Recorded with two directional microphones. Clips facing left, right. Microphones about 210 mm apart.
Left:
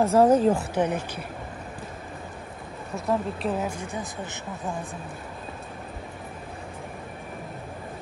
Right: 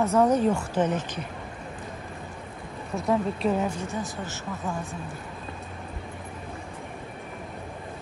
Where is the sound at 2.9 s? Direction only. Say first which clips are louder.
Right 2 dB; centre (ahead or behind).